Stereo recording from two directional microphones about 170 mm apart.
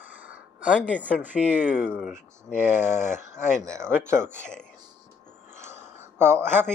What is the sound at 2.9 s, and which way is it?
Speech, 15° right (ahead or behind).